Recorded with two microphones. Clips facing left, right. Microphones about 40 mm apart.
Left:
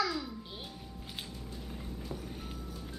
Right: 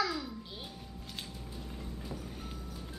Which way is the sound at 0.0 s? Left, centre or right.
Centre.